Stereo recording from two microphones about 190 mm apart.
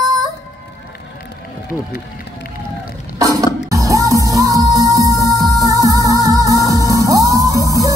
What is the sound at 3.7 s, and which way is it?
Music, 15° right (ahead or behind).